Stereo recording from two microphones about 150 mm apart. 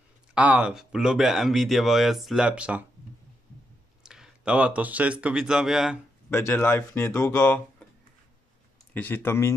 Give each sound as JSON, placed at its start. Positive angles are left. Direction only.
{"t": 0.3, "sound": "speech", "side_deg": -10}
{"t": 4.0, "sound": "speech", "side_deg": -5}
{"t": 6.3, "sound": "speech", "side_deg": 15}
{"t": 8.9, "sound": "speech", "side_deg": 15}